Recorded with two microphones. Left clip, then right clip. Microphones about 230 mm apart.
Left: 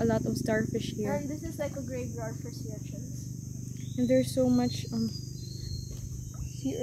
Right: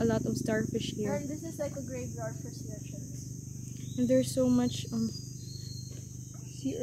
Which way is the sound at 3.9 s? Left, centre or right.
Centre.